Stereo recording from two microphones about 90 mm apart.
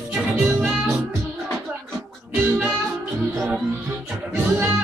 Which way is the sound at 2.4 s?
20° right (ahead or behind).